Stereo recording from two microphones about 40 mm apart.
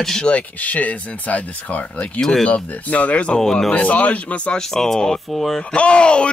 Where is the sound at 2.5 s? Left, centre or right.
Left.